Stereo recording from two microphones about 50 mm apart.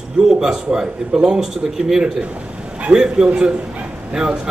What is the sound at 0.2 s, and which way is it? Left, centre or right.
Speech, centre.